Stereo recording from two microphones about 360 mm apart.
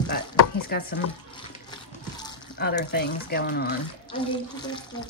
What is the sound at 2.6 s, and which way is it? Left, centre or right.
Speech, left.